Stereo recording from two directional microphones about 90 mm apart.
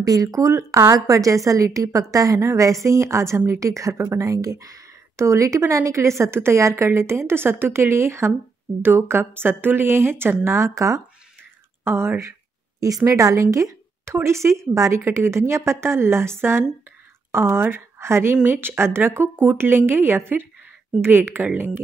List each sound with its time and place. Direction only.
0.0 s a woman's voice: 40° right (ahead or behind); by 21.6 s 20° right (ahead or behind)